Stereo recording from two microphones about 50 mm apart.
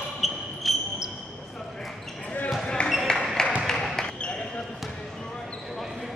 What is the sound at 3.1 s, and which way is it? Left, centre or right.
Music, centre.